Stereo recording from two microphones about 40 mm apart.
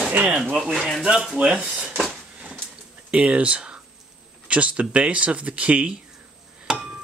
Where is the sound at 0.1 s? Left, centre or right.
Right.